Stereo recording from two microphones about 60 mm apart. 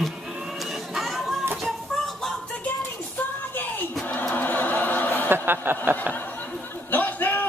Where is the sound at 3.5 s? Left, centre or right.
Left.